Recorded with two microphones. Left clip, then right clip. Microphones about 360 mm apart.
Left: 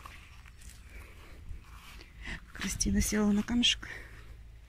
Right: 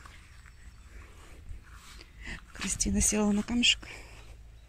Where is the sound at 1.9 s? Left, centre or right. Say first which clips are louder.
Even; centre.